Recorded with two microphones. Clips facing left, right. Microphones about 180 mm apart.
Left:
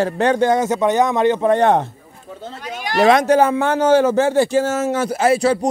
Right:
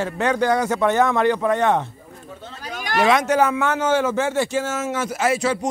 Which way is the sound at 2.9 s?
35° left (ahead or behind).